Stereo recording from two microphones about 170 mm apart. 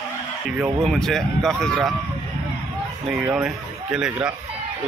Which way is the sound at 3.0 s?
5° right (ahead or behind).